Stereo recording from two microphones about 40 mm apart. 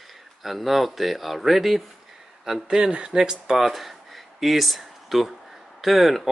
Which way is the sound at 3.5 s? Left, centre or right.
Centre.